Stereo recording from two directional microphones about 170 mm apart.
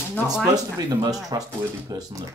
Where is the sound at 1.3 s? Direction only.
20° right (ahead or behind).